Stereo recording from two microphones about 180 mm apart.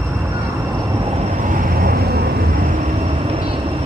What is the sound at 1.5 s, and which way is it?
Vehicle, 55° right (ahead or behind).